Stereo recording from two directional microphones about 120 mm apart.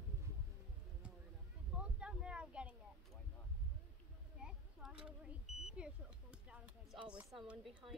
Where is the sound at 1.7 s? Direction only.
10° right (ahead or behind).